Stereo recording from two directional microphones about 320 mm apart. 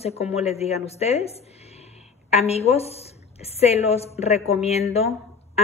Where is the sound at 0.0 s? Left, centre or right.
Centre.